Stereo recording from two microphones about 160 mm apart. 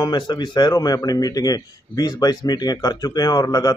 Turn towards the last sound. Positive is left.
turn(degrees=25)  # may be behind; listen again after turning